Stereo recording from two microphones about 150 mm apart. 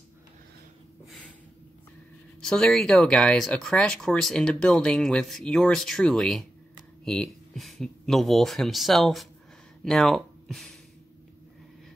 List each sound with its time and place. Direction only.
2.4 s speech: 5° left (ahead or behind)